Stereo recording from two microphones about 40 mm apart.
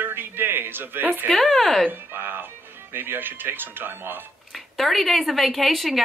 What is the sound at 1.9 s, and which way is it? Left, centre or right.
Speech, right.